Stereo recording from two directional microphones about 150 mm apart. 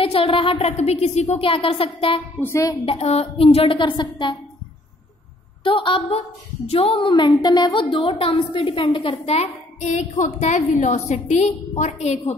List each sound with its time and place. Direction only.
0.0 s a woman's voice: 40° left (ahead or behind)
2.4 s a woman's voice: 20° left (ahead or behind)
2.8 s a woman's voice: 40° left (ahead or behind)
5.6 s a woman's voice: 35° left (ahead or behind)